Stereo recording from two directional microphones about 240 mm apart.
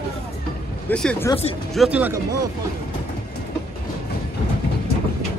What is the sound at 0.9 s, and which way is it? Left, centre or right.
Speech, centre.